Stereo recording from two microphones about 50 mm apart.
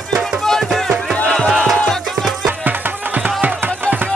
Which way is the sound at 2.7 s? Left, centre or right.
Right.